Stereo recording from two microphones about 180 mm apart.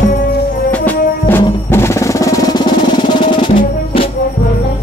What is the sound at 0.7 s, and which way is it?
Music, 10° left (ahead or behind).